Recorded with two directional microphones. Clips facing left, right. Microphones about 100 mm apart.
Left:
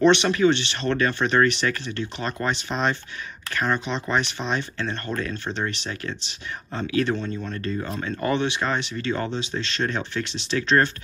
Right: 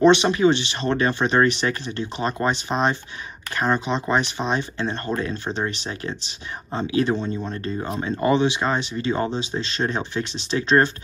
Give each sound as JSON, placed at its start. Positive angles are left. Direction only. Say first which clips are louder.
{"t": 0.0, "sound": "speech", "louder": "right 2 dB", "side_deg": -10}
{"t": 3.5, "sound": "speech", "louder": "right 2 dB", "side_deg": -25}
{"t": 4.1, "sound": "speech", "louder": "right 2 dB", "side_deg": -15}
{"t": 8.4, "sound": "speech", "louder": "right 4 dB", "side_deg": -10}
{"t": 8.9, "sound": "speech", "louder": "right 3 dB", "side_deg": -20}